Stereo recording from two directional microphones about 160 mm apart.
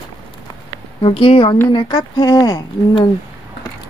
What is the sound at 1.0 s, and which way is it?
Speech, 35° left (ahead or behind).